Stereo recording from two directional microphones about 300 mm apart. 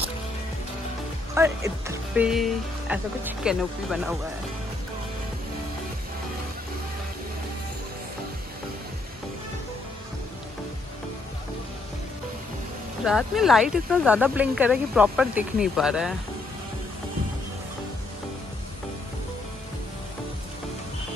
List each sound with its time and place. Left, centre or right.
1.3 s speech: centre
13.0 s speech: centre